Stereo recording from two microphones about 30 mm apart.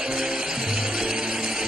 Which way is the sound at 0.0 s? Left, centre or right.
Right.